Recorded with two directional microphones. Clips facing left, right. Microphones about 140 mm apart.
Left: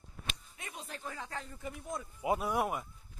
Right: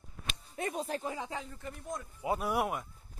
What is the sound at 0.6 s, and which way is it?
Speech, 40° right (ahead or behind).